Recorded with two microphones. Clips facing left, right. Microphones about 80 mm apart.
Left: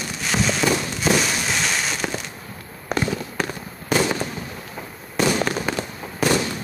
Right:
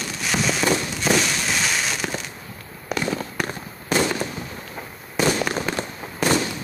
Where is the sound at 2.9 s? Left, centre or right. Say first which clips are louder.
Left 2 dB; left.